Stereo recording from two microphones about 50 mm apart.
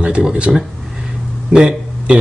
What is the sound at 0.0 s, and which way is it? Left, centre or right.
Speech, right.